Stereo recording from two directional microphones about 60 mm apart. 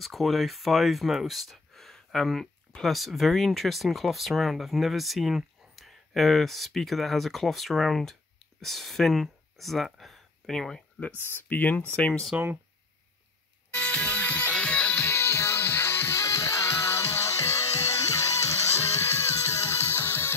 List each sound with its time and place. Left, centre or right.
0.0 s speech: centre
11.2 s speech: left
12.3 s speech: right
13.7 s music: left
15.0 s music: left
16.2 s music: left
16.8 s music: left